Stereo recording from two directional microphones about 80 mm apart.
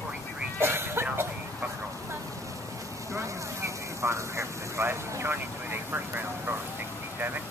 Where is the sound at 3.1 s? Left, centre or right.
Right.